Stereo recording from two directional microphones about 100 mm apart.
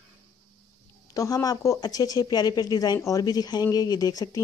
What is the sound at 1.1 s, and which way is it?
A woman's voice, 35° left (ahead or behind).